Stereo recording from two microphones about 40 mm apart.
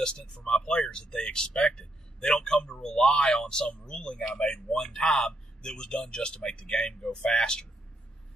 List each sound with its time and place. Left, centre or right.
0.0 s a man's voice: centre